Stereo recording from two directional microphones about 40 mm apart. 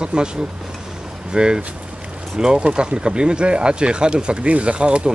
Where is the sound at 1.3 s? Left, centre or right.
Centre.